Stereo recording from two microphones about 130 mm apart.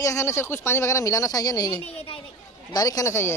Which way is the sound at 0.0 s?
25° left (ahead or behind).